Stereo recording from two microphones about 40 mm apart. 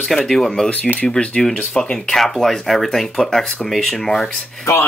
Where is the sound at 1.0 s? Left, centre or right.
Left.